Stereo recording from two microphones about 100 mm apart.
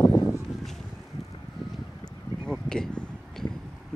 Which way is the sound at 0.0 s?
35° left (ahead or behind).